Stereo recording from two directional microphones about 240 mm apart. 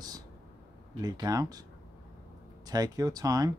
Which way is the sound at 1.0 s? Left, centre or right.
Centre.